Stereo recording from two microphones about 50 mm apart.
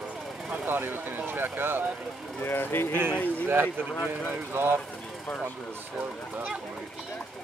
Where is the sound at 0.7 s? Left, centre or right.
Right.